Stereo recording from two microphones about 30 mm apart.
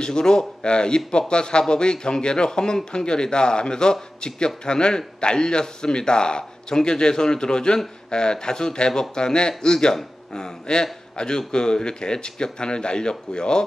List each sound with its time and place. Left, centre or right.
0.0 s speech: left